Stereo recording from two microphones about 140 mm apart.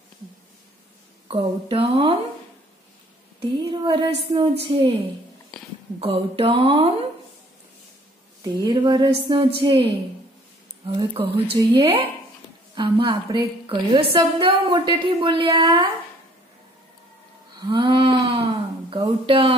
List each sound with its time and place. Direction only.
1.3 s a woman's voice: 40° right (ahead or behind)
3.3 s a woman's voice: 35° right (ahead or behind)
5.9 s a woman's voice: 40° right (ahead or behind)
8.5 s a woman's voice: 30° right (ahead or behind)
10.9 s a woman's voice: 40° right (ahead or behind)
17.6 s a sound: 35° right (ahead or behind)
18.9 s a woman's voice: 40° right (ahead or behind)